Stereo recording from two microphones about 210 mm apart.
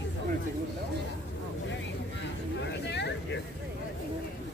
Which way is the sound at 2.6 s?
55° left (ahead or behind).